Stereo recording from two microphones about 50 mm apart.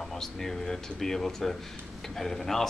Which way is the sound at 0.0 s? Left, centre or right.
Centre.